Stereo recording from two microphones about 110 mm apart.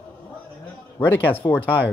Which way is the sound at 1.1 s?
20° left (ahead or behind).